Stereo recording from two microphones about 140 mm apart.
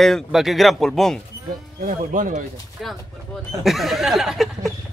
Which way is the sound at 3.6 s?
Centre (ahead or behind).